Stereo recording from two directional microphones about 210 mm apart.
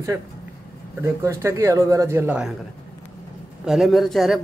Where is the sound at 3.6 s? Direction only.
Centre (ahead or behind).